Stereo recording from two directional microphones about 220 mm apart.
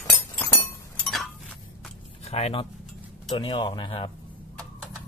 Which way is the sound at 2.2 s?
30° left (ahead or behind).